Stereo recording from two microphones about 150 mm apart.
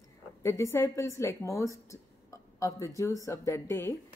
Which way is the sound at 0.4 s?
20° left (ahead or behind).